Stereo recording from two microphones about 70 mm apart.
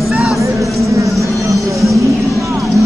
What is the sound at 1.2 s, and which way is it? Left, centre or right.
Music, right.